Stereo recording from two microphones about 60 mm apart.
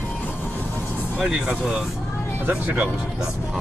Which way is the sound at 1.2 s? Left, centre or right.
Centre.